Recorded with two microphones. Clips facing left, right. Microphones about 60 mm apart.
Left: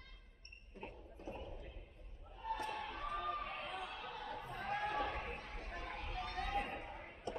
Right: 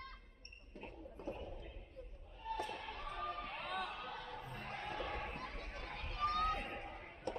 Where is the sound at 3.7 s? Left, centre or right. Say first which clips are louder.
Right 3 dB; right.